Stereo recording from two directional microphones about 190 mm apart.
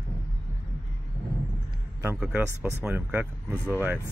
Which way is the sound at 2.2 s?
5° right (ahead or behind).